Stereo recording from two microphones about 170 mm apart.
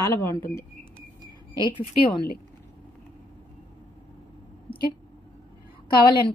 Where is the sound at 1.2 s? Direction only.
25° left (ahead or behind).